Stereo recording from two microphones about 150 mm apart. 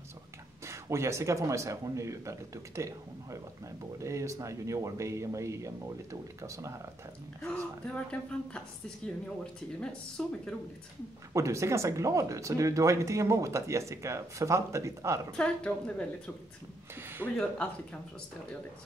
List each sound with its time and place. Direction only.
0.7 s speech: 20° right (ahead or behind)
7.4 s a woman's voice: 10° left (ahead or behind)
11.3 s speech: 20° right (ahead or behind)
15.3 s a woman's voice: 5° left (ahead or behind)
17.2 s a woman's voice: 5° left (ahead or behind)